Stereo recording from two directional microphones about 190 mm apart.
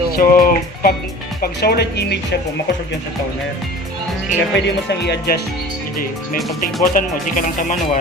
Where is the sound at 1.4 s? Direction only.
55° left (ahead or behind).